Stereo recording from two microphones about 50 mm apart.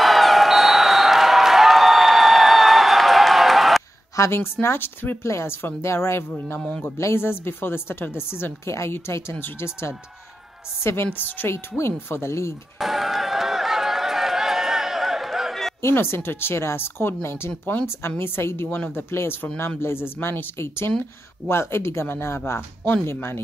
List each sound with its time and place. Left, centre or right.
0.0 s a sound: centre
4.2 s speech: left
5.2 s speech: left
7.0 s speech: left
7.2 s speech: left
8.6 s speech: left
8.9 s speech: left
11.1 s a woman's voice: left
11.4 s speech: left
12.7 s a sound: centre
15.9 s speech: left
20.5 s speech: left
23.0 s speech: left